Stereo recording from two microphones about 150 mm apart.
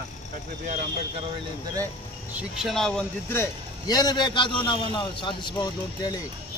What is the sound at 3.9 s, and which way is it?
A man's voice, 25° left (ahead or behind).